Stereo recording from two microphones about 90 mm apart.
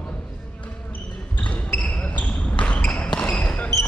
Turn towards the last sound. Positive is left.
turn(degrees=15)  # may be behind; listen again after turning